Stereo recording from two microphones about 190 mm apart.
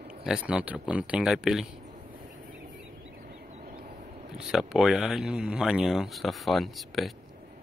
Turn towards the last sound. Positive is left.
turn(degrees=0)  # may be behind; listen again after turning